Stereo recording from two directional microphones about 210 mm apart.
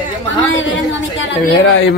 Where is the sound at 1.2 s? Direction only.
60° left (ahead or behind).